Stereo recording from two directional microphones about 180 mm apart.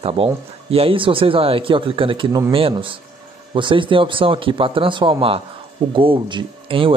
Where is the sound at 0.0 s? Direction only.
35° right (ahead or behind).